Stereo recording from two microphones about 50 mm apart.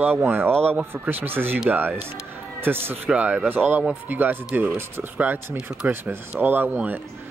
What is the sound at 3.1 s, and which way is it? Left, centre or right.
Speech, right.